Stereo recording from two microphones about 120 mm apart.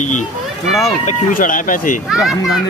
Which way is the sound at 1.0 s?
90° left.